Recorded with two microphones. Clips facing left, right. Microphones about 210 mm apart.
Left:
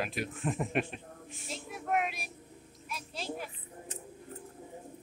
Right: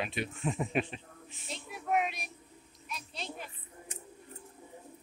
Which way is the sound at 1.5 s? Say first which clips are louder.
Right 1 dB; centre (ahead or behind).